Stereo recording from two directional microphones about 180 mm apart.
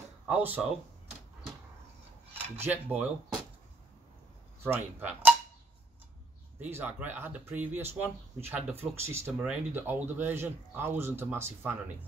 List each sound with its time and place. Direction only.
0.3 s speech: 10° right (ahead or behind)
2.3 s cutlery: 10° right (ahead or behind)
4.6 s speech: 10° right (ahead or behind)
6.6 s speech: 10° right (ahead or behind)